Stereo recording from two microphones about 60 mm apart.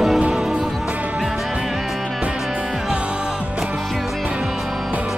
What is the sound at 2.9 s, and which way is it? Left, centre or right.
Music, centre.